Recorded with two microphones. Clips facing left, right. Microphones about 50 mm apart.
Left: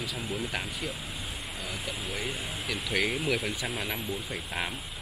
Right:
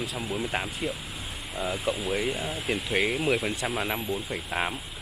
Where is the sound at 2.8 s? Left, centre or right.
Right.